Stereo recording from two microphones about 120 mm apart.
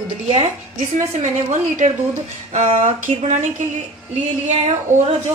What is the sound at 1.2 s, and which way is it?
Speech, 80° right.